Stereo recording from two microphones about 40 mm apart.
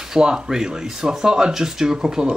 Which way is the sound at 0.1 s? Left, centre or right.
Centre.